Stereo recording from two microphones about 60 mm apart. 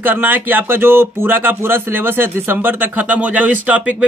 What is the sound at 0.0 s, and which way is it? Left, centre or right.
Speech, right.